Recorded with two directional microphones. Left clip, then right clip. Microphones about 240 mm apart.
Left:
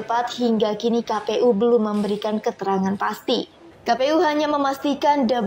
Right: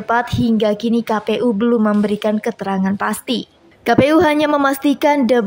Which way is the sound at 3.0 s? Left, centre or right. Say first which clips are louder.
Right 2 dB; right.